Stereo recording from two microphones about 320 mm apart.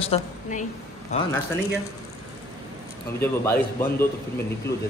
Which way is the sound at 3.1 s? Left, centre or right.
Centre.